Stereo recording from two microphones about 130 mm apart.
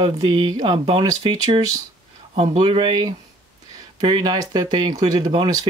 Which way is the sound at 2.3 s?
45° right (ahead or behind).